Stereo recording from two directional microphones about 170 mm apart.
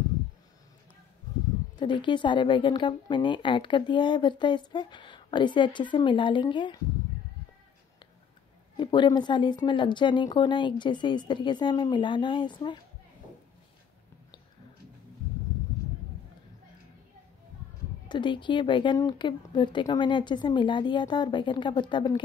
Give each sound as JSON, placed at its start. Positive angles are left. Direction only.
{"t": 1.8, "sound": "a woman's voice", "side_deg": 30}
{"t": 8.7, "sound": "a woman's voice", "side_deg": 25}
{"t": 18.0, "sound": "a woman's voice", "side_deg": 25}